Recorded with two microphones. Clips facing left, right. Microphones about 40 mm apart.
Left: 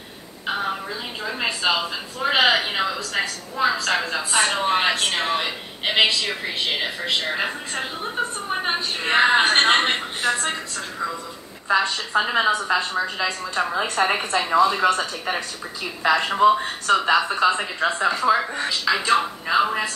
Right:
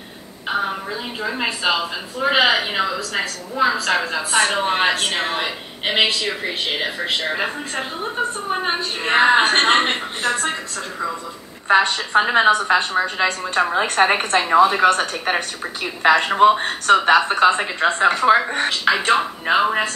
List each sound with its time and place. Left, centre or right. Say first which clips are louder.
1.2 s a woman's voice: right 2 dB; centre
11.6 s a woman's voice: right 5 dB; right
14.5 s a woman's voice: right 4 dB; right
14.8 s a woman's voice: right 4 dB; right
19.0 s speech: right 3 dB; right